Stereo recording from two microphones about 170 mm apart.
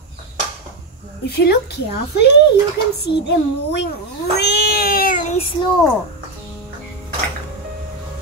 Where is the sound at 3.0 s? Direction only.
85° left.